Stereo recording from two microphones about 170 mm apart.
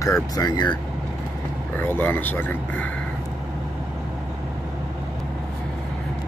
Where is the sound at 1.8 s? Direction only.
10° left (ahead or behind).